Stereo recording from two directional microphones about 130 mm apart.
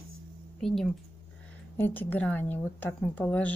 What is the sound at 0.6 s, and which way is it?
Speech, centre (ahead or behind).